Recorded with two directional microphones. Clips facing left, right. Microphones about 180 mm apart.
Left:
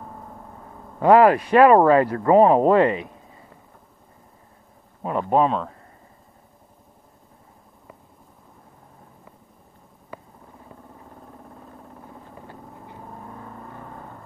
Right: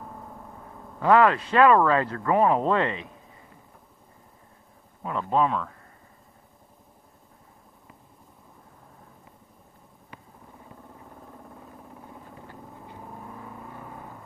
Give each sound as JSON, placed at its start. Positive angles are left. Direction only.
{"t": 0.9, "sound": "speech", "side_deg": 30}
{"t": 5.0, "sound": "speech", "side_deg": 30}
{"t": 13.5, "sound": "vehicle", "side_deg": -10}